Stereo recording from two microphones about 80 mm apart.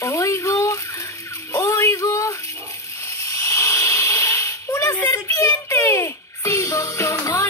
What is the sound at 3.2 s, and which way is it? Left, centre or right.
Hiss, left.